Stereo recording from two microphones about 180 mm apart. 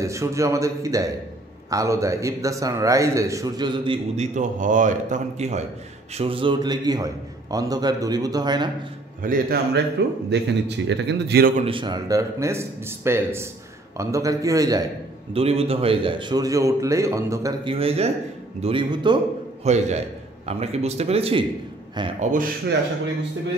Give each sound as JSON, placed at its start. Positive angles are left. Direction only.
{"t": 0.0, "sound": "a man's voice", "side_deg": -15}
{"t": 4.4, "sound": "a man's voice", "side_deg": -45}
{"t": 6.1, "sound": "a man's voice", "side_deg": -30}
{"t": 9.2, "sound": "a man's voice", "side_deg": -50}
{"t": 10.0, "sound": "a man's voice", "side_deg": -75}
{"t": 11.5, "sound": "a man's voice", "side_deg": -30}
{"t": 15.3, "sound": "a man's voice", "side_deg": -35}
{"t": 17.7, "sound": "a man's voice", "side_deg": -35}
{"t": 19.6, "sound": "speech", "side_deg": -40}
{"t": 22.2, "sound": "a man's voice", "side_deg": -45}